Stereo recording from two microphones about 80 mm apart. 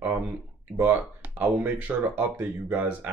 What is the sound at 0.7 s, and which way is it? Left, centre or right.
Speech, right.